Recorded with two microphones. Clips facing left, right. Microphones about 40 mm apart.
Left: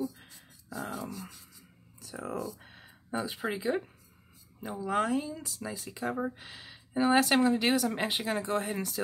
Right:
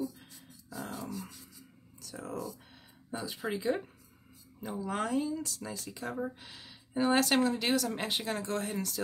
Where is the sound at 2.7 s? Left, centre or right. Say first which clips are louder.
Left 6 dB; left.